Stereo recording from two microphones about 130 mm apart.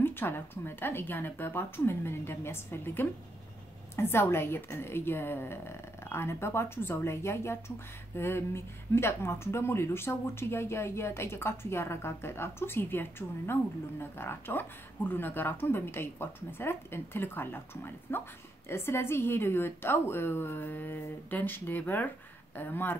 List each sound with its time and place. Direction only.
0.0 s a woman's voice: 15° left (ahead or behind)